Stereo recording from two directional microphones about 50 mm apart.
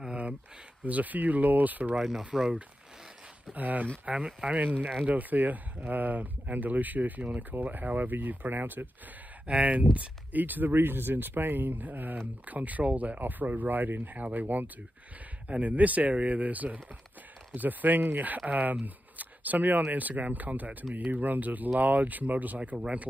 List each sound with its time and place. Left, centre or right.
0.0 s a sound: right
0.8 s speech: right
2.0 s speech: centre
3.5 s speech: right
4.0 s speech: right
5.0 s speech: right
9.5 s speech: right
19.1 s a sound: right
19.9 s speech: right
22.6 s speech: right